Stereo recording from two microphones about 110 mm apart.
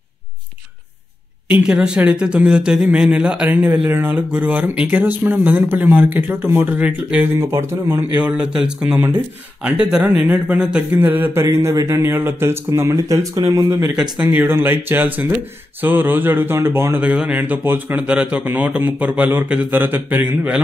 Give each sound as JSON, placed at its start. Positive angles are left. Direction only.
{"t": 1.5, "sound": "speech", "side_deg": -10}
{"t": 8.2, "sound": "speech", "side_deg": -10}
{"t": 11.4, "sound": "speech", "side_deg": -30}
{"t": 13.9, "sound": "speech", "side_deg": -10}